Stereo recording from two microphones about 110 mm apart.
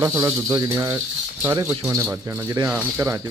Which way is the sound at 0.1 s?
25° right (ahead or behind).